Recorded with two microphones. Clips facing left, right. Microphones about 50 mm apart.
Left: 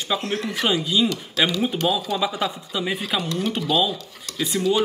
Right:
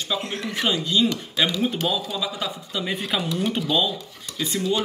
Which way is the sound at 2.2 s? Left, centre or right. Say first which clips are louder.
Left 5 dB; left.